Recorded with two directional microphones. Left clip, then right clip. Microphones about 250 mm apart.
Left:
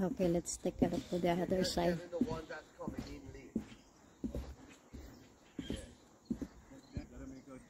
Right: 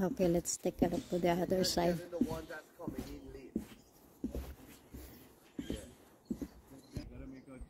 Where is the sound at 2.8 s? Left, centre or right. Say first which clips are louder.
Right 1 dB; left.